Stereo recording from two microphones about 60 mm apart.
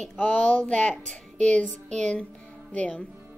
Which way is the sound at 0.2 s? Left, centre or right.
Left.